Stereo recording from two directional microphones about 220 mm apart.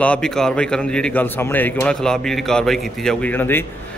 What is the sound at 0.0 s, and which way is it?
A man's voice, 5° left (ahead or behind).